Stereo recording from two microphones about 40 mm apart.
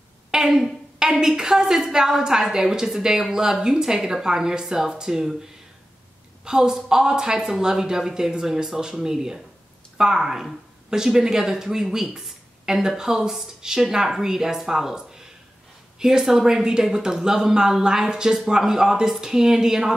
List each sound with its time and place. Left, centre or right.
0.3 s a sound: centre
1.3 s speech: centre
6.4 s speech: centre